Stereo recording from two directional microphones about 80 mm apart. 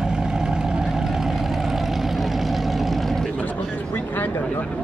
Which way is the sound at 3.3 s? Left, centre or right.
Left.